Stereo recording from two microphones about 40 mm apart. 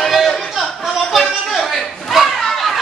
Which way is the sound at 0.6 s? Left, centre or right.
Centre.